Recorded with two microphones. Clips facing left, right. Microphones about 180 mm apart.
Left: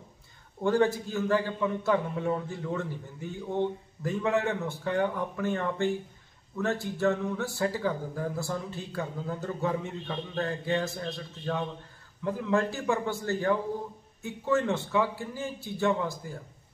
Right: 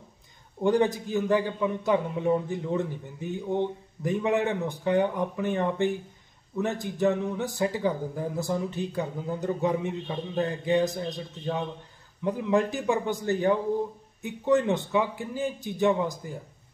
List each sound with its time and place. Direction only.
0.6 s a man's voice: 15° right (ahead or behind)